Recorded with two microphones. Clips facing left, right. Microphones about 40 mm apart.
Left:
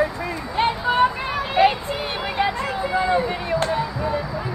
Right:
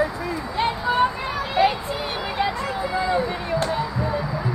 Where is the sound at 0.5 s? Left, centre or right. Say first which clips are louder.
Left 2 dB; left.